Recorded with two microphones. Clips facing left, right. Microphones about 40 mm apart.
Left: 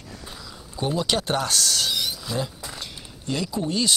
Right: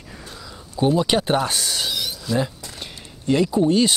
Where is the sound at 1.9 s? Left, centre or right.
Centre.